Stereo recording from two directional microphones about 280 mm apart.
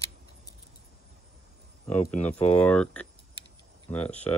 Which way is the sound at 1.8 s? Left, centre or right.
Centre.